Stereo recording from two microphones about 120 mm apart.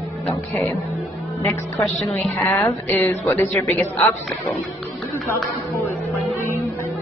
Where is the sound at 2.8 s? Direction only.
15° left (ahead or behind).